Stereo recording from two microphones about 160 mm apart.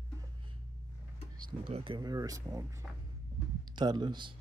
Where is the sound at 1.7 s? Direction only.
30° right (ahead or behind).